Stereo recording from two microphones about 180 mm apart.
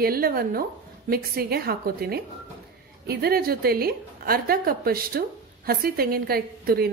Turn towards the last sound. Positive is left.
turn(degrees=-60)  # may be behind; listen again after turning